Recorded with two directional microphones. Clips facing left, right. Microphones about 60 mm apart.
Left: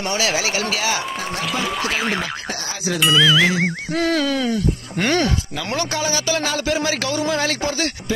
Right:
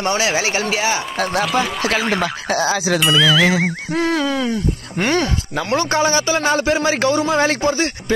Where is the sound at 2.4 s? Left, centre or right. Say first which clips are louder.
Right 8 dB; right.